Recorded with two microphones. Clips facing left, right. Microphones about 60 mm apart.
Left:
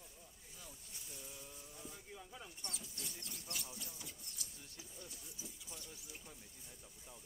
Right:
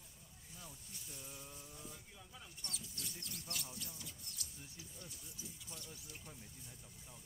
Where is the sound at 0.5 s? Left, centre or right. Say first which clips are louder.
Right 2 dB; centre.